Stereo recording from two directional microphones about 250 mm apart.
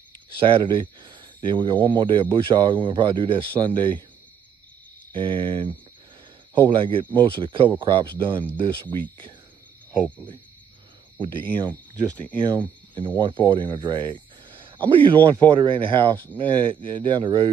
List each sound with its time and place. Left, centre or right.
0.4 s speech: centre
5.1 s speech: right
11.1 s speech: centre